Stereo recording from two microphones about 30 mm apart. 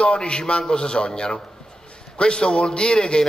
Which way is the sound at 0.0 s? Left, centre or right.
Left.